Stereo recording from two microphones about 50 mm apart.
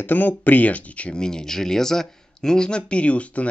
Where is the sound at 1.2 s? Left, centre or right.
Centre.